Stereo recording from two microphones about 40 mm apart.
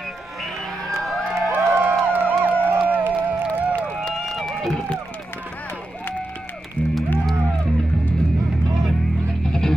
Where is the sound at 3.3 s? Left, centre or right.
Right.